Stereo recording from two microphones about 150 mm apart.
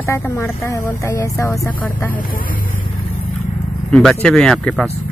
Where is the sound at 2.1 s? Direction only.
65° left (ahead or behind).